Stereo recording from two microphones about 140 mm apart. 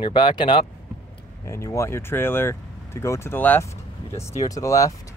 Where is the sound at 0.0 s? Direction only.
35° left (ahead or behind).